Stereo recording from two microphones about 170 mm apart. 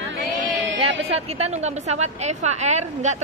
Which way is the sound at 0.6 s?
90° right.